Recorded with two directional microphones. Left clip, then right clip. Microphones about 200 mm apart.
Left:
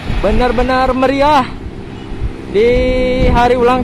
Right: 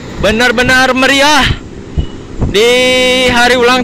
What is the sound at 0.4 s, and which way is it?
Speech, 20° right (ahead or behind).